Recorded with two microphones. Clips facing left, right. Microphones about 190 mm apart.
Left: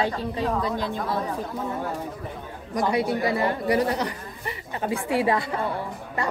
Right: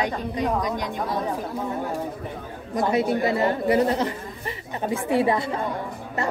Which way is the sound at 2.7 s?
25° right (ahead or behind).